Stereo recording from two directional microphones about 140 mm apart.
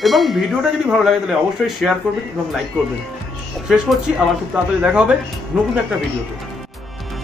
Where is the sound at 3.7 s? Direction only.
5° right (ahead or behind).